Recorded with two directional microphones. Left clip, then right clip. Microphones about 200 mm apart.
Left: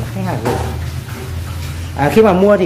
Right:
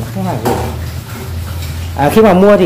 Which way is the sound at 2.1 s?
20° right (ahead or behind).